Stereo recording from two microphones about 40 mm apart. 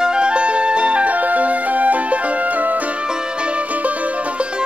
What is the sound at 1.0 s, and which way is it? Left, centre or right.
Music, right.